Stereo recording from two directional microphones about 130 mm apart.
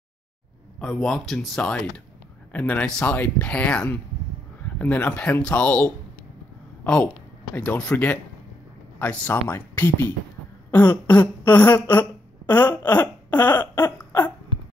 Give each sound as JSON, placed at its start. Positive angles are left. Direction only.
{"t": 0.7, "sound": "speech", "side_deg": 0}
{"t": 6.8, "sound": "a sound", "side_deg": 10}
{"t": 7.5, "sound": "speech", "side_deg": 10}